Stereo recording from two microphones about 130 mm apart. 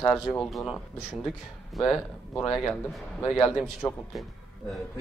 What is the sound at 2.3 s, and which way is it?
Speech, 10° left (ahead or behind).